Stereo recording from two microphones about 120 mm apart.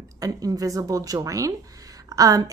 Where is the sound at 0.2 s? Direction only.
30° right (ahead or behind).